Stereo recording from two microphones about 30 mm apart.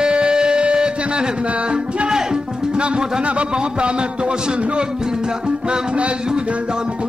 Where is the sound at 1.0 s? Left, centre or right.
Right.